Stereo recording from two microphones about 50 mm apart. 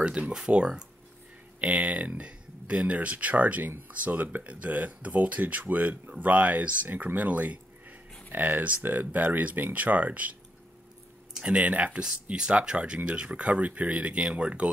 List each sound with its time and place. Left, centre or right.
0.0 s speech: right
11.4 s speech: right